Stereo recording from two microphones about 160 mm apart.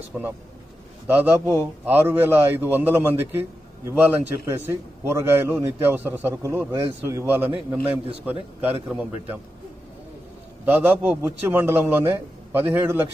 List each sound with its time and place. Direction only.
0.1 s a man's voice: 10° right (ahead or behind)
10.6 s a man's voice: 10° right (ahead or behind)